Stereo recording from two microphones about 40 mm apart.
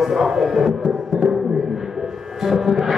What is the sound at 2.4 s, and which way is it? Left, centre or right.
Music, centre.